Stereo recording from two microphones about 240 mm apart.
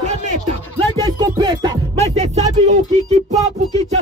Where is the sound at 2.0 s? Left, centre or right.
Right.